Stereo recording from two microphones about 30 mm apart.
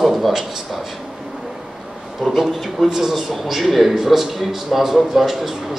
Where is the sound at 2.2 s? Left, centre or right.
Centre.